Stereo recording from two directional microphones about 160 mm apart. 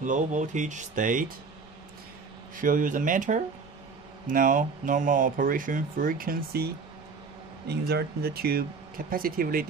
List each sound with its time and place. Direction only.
0.0 s speech: 50° right (ahead or behind)
2.5 s speech: 60° right (ahead or behind)
7.6 s speech: 90° right; by 9.7 s 65° right (ahead or behind)